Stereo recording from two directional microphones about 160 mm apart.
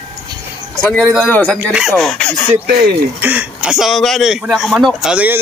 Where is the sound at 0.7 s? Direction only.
Centre (ahead or behind).